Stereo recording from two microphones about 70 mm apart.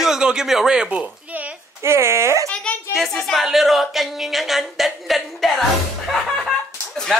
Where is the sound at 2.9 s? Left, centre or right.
Centre.